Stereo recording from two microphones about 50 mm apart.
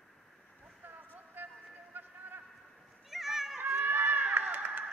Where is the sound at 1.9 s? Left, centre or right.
Right.